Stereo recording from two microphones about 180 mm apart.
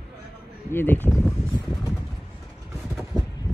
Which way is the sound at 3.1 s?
Centre (ahead or behind).